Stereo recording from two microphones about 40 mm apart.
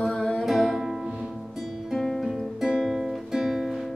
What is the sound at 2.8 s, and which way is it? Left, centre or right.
Music, centre.